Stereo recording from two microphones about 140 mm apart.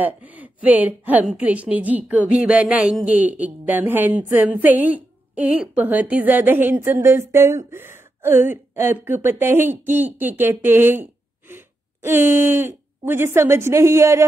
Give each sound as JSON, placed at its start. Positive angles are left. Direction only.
{"t": 0.0, "sound": "a woman's voice", "side_deg": -10}